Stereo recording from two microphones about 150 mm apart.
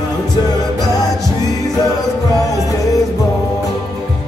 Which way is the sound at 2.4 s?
25° left (ahead or behind).